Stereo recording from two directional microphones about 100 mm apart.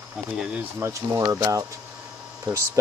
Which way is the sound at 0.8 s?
30° right (ahead or behind).